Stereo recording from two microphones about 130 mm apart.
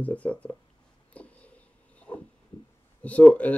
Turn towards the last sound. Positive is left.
turn(degrees=10)  # may be behind; listen again after turning